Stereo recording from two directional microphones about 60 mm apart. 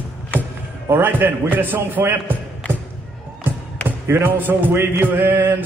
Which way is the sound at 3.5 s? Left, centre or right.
Right.